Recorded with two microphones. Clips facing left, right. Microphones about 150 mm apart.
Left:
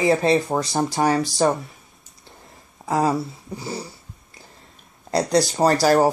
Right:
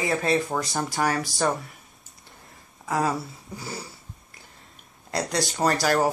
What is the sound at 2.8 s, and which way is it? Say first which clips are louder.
Speech: left 5 dB; 25° left (ahead or behind).